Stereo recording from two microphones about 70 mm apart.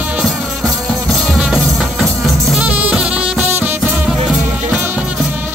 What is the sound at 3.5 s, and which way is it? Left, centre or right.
Music, right.